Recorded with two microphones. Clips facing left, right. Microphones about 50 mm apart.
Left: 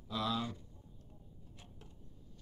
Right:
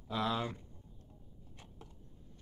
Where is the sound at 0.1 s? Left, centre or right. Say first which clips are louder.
Right 2 dB; right.